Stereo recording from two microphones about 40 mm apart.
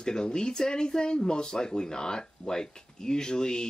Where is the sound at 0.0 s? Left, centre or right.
Centre.